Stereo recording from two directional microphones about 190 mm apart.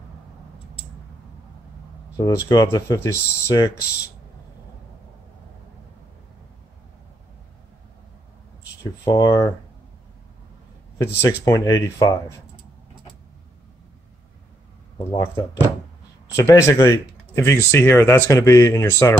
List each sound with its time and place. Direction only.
2.1 s speech: 20° left (ahead or behind)
9.0 s speech: 20° left (ahead or behind)
11.0 s speech: 15° left (ahead or behind)
15.0 s speech: 20° left (ahead or behind)